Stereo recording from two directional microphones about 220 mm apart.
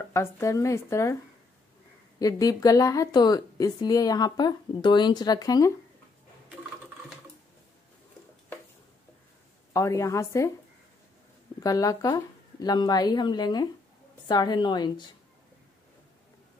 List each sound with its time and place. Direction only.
0.1 s a woman's voice: 10° left (ahead or behind)
2.1 s a woman's voice: 15° left (ahead or behind)
9.7 s a woman's voice: 15° left (ahead or behind)
11.6 s a woman's voice: 15° left (ahead or behind)